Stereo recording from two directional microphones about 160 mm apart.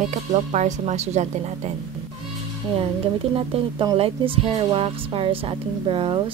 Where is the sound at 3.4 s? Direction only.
35° right (ahead or behind).